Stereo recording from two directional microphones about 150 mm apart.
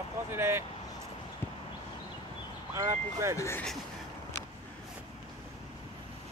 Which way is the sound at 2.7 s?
20° right (ahead or behind).